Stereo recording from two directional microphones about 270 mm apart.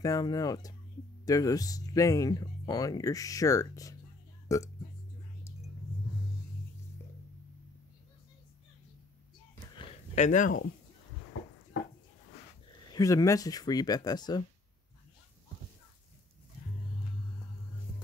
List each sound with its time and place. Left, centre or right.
0.0 s speech: centre
9.8 s a sound: left
12.9 s speech: centre